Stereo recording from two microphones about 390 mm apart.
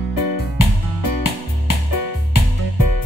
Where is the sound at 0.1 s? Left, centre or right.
Left.